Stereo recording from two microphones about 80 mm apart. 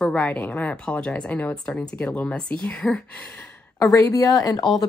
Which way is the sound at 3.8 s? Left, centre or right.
Left.